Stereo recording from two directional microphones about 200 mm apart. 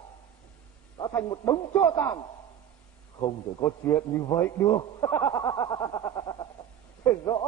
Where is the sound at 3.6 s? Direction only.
15° left (ahead or behind).